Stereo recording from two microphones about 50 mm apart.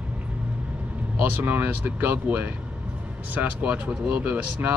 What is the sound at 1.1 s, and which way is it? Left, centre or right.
Speech, right.